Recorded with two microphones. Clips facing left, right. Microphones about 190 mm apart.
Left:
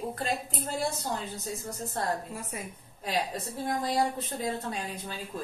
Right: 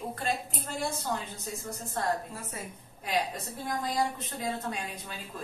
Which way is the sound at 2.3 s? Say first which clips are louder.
Left 2 dB; 15° left (ahead or behind).